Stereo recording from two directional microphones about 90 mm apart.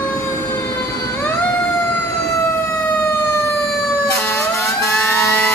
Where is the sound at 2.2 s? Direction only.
30° left (ahead or behind).